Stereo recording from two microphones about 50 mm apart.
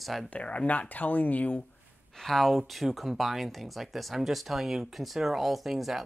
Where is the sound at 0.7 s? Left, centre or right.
Left.